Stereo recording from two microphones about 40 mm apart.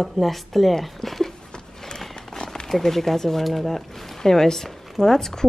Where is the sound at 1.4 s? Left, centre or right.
Centre.